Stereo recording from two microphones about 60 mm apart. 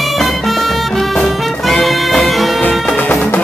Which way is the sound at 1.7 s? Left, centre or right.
Centre.